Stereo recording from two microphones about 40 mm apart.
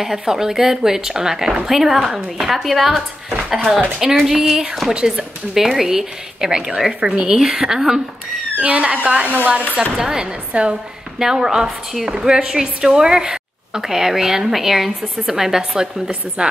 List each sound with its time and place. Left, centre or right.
0.0 s a woman's voice: centre
2.4 s speech: centre
3.3 s a woman's voice: centre
8.5 s speech: right
9.9 s speech: centre
11.1 s a woman's voice: centre